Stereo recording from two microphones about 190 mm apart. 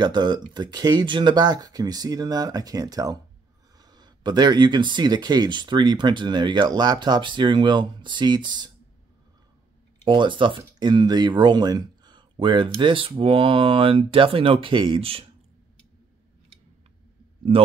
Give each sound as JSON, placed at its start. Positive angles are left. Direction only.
{"t": 0.0, "sound": "speech", "side_deg": -25}
{"t": 10.0, "sound": "speech", "side_deg": -25}